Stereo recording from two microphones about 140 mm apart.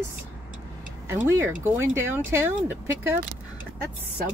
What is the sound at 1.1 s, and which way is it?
Speech, 15° right (ahead or behind).